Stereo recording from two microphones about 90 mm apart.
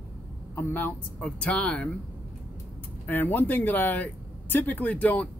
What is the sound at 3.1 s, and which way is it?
Speech, 20° left (ahead or behind).